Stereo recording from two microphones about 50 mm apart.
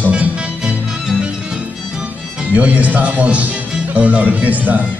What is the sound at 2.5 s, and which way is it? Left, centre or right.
Speech, right.